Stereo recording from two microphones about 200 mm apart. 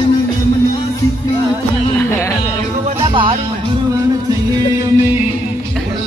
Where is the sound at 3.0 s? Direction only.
25° right (ahead or behind).